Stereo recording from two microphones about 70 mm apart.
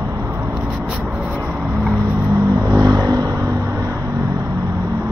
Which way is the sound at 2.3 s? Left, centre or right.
Right.